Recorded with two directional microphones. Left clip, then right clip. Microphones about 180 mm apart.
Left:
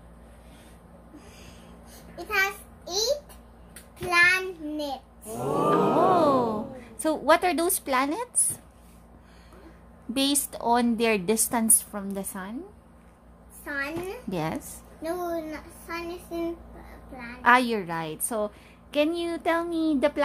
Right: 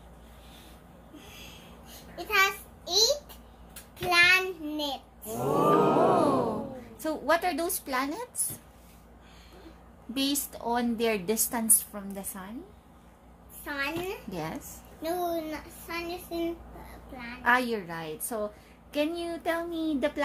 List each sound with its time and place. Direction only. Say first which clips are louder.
2.1 s a sound: right 1 dB; 5° left (ahead or behind)
4.0 s child singing: left 1 dB; 5° left (ahead or behind)
6.8 s speech: left 6 dB; 35° left (ahead or behind)
10.1 s a woman's voice: left 4 dB; 35° left (ahead or behind)
13.7 s a child's voice: left 1 dB; 5° left (ahead or behind)
14.3 s a woman's voice: left 6 dB; 35° left (ahead or behind)
15.0 s speech: even; 5° left (ahead or behind)
17.4 s a woman's voice: left 5 dB; 35° left (ahead or behind)